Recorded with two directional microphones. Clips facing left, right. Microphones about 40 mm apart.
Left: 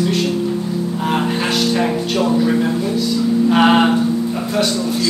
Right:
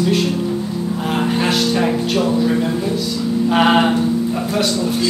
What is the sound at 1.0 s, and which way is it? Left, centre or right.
Speech, centre.